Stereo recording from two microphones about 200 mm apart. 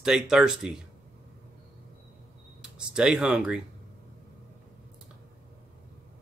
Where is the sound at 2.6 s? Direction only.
5° right (ahead or behind).